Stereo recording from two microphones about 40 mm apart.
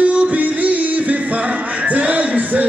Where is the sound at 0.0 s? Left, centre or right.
Right.